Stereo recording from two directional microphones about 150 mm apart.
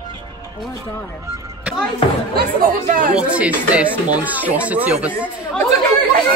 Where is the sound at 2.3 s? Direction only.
90° right.